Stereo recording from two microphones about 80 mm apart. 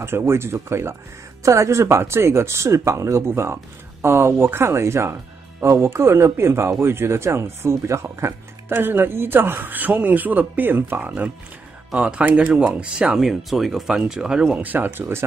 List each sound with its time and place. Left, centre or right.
0.0 s speech: right; by 14.6 s centre
14.6 s speech: right